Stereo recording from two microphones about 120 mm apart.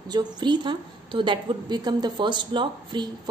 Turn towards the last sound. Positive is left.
turn(degrees=-40)  # may be behind; listen again after turning